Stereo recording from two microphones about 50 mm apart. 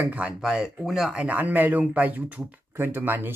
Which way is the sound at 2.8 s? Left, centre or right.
Right.